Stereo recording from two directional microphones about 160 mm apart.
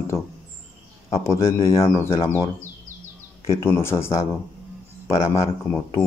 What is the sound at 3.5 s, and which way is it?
A man's voice, 15° left (ahead or behind).